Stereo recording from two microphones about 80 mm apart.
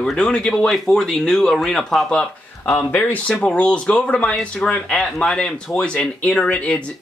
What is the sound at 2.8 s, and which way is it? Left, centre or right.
Speech, centre.